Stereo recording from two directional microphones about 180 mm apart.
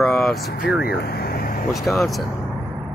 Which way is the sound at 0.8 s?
60° left (ahead or behind).